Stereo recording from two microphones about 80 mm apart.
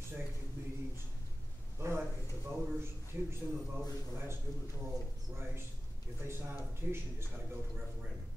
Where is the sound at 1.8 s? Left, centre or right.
Right.